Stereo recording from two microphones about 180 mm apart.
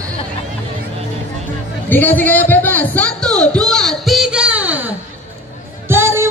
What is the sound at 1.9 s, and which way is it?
Speech, 10° left (ahead or behind).